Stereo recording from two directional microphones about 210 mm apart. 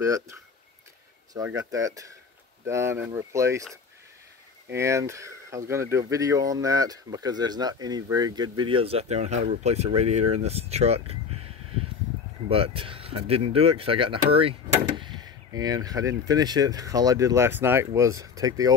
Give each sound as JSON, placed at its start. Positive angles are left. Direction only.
{"t": 0.0, "sound": "speech", "side_deg": -15}
{"t": 1.6, "sound": "speech", "side_deg": -15}
{"t": 4.7, "sound": "speech", "side_deg": -15}
{"t": 12.4, "sound": "speech", "side_deg": -25}